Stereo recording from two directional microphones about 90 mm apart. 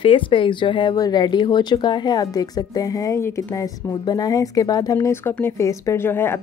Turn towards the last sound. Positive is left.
turn(degrees=25)  # may be behind; listen again after turning